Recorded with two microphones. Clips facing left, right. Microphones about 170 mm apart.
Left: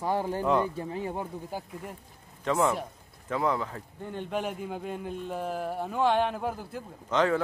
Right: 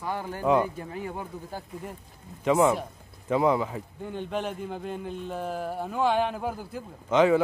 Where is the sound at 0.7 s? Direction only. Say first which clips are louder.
Left 2 dB; 25° left (ahead or behind).